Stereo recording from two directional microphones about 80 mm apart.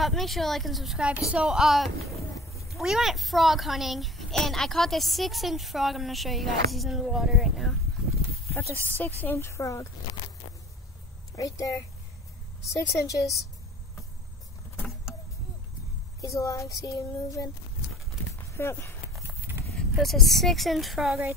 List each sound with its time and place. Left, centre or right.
0.0 s a child's voice: centre
0.9 s a woman's voice: centre
8.8 s speech: left
10.1 s a sound: left
11.3 s child singing: left
16.2 s child singing: left
18.6 s speech: left
19.2 s a sound: right
19.7 s a child's voice: centre